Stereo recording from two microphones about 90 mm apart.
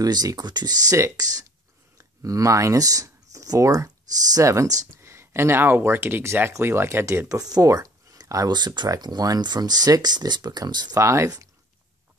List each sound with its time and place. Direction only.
0.0 s speech: 45° right (ahead or behind)
0.9 s speech: 40° right (ahead or behind)
8.5 s speech: 50° right (ahead or behind)
11.0 s speech: 35° right (ahead or behind)